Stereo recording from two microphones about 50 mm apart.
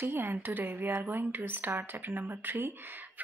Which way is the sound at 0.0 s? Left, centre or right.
Right.